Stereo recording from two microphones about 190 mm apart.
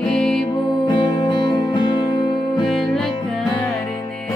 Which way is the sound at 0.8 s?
25° left (ahead or behind).